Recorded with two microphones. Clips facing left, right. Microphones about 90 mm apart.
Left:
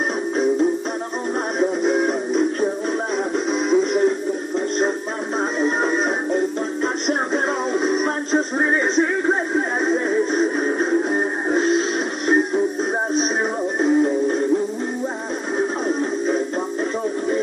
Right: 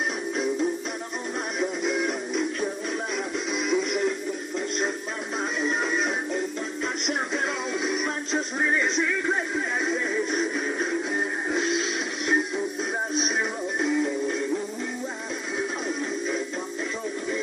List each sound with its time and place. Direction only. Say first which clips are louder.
1.6 s music: left 8 dB; 40° left (ahead or behind)
5.6 s music: left 6 dB; 40° left (ahead or behind)
13.7 s music: left 8 dB; 40° left (ahead or behind)
15.6 s music: left 9 dB; 40° left (ahead or behind)